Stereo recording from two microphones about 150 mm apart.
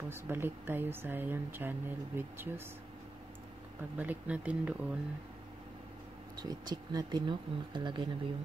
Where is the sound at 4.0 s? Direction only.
10° right (ahead or behind).